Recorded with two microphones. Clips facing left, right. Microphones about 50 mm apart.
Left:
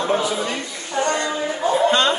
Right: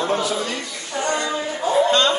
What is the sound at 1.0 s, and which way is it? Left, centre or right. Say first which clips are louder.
Speech: left 3 dB; left.